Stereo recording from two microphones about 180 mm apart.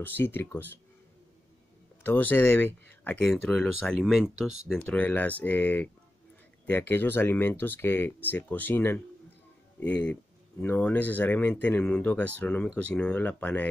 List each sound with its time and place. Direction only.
0.0 s speech: 10° left (ahead or behind)
2.0 s speech: 10° left (ahead or behind)
4.8 s speech: 10° left (ahead or behind)